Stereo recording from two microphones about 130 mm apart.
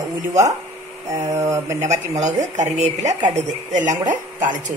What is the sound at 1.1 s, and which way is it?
Speech, 25° right (ahead or behind).